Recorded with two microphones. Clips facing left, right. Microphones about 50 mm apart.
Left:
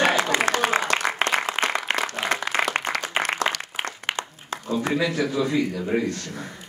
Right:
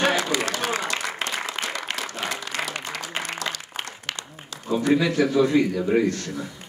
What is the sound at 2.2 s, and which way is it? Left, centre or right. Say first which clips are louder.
Applause: left 5 dB; left.